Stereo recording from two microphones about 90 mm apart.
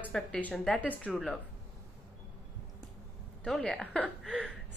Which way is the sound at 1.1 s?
Centre (ahead or behind).